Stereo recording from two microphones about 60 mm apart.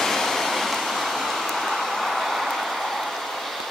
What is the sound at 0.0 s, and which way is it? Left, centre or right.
Vehicle, centre.